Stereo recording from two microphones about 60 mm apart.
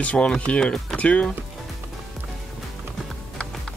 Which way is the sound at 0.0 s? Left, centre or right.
Centre.